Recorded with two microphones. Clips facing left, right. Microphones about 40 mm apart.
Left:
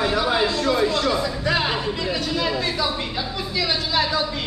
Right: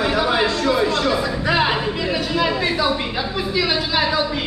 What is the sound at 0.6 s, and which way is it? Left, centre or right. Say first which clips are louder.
Music: right 2 dB; centre.